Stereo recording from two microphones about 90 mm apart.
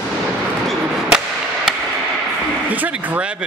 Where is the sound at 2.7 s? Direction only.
20° right (ahead or behind).